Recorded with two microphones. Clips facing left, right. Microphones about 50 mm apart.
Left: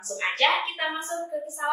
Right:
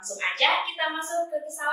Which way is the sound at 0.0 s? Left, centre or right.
Centre.